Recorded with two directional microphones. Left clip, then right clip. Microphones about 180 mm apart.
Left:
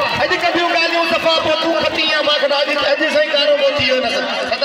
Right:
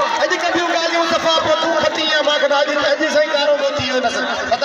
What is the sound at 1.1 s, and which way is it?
A man's voice, 10° left (ahead or behind).